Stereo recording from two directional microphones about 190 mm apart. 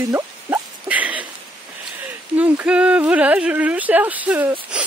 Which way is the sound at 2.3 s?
10° right (ahead or behind).